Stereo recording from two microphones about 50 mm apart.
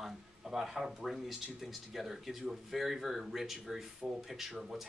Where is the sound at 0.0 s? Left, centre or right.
Centre.